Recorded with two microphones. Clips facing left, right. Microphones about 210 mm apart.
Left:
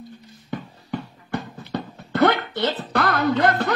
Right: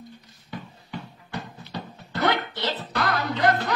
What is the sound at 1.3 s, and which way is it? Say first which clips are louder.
Music: left 7 dB; 55° left (ahead or behind).